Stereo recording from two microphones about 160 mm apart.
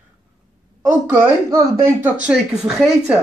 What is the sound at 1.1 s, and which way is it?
Speech, 15° right (ahead or behind).